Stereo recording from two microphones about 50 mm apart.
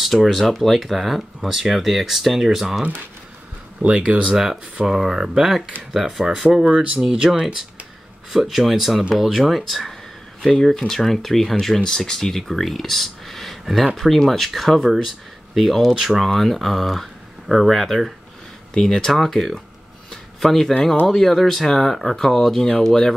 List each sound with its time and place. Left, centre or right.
0.0 s speech: centre
3.8 s speech: right; by 6.7 s centre
6.7 s speech: right
7.0 s speech: centre
20.1 s a sound: centre
21.1 s speech: centre